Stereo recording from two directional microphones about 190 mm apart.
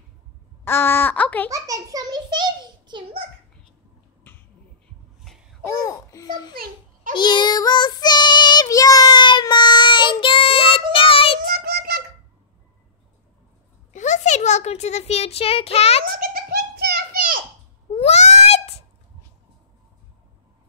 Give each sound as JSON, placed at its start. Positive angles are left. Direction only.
{"t": 0.7, "sound": "a woman's voice", "side_deg": 10}
{"t": 1.5, "sound": "a child's voice", "side_deg": -20}
{"t": 5.2, "sound": "a sound", "side_deg": 0}
{"t": 5.7, "sound": "a child's voice", "side_deg": 20}
{"t": 6.5, "sound": "a child's voice", "side_deg": -50}
{"t": 7.2, "sound": "child singing", "side_deg": 25}
{"t": 11.4, "sound": "child singing", "side_deg": -55}
{"t": 13.9, "sound": "a child's voice", "side_deg": 40}
{"t": 16.2, "sound": "a sound", "side_deg": -50}
{"t": 17.9, "sound": "a sound", "side_deg": 35}